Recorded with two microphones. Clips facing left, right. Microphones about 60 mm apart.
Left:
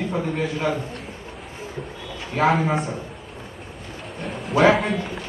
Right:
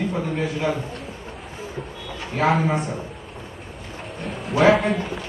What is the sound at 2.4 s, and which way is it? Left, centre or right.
Speech, centre.